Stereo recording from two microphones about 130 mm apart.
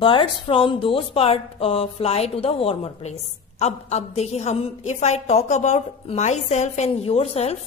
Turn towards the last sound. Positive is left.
turn(degrees=55)  # may be behind; listen again after turning